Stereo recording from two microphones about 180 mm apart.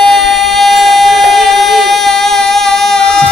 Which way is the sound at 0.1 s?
Centre (ahead or behind).